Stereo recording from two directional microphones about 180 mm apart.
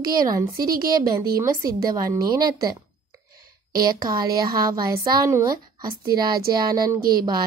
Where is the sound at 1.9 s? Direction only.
20° right (ahead or behind).